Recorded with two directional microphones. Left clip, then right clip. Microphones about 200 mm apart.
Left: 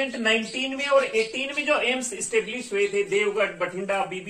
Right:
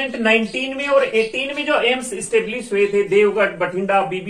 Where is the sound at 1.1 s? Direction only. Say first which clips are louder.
Right 6 dB; 10° left (ahead or behind).